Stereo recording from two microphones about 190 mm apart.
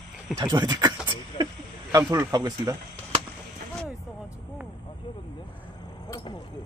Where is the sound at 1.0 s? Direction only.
25° right (ahead or behind).